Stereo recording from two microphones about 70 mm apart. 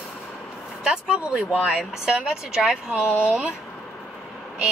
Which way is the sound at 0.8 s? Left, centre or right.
Centre.